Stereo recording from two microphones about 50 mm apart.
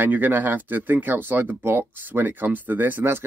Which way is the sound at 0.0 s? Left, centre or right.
Right.